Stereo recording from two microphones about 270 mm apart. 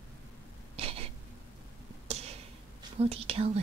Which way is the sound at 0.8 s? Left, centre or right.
Right.